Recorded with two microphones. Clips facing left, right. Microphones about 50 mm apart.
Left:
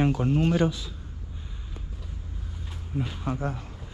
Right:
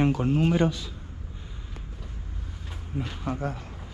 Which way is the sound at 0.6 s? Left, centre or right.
Right.